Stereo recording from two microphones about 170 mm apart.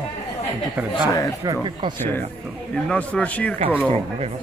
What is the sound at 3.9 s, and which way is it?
Speech, 35° right (ahead or behind).